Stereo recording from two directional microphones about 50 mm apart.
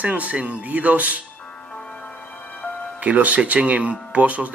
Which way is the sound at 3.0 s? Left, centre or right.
Right.